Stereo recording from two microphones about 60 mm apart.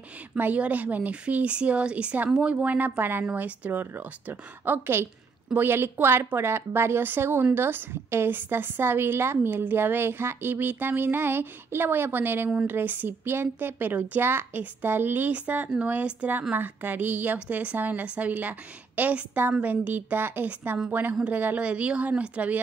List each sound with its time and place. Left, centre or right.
0.4 s a woman's voice: right